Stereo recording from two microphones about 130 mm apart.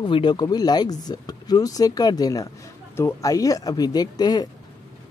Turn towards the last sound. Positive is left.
turn(degrees=30)  # may be behind; listen again after turning